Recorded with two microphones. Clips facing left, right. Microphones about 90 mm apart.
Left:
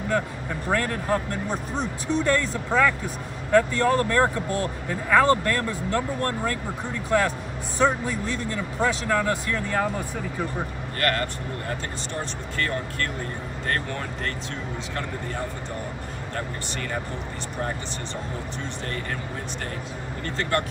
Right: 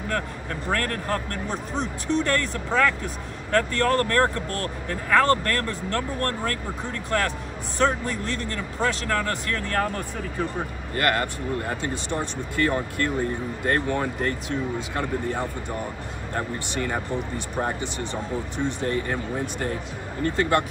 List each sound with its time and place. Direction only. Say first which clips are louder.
0.1 s speech: left 3 dB; 10° left (ahead or behind)
11.0 s speech: right 2 dB; 15° right (ahead or behind)
20.2 s speech: right 4 dB; 15° right (ahead or behind)